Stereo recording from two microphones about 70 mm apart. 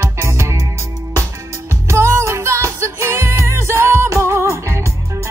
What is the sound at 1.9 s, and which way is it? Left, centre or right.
Music, right.